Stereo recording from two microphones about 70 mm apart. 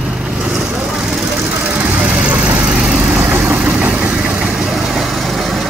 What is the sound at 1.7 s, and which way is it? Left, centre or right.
Vehicle, centre.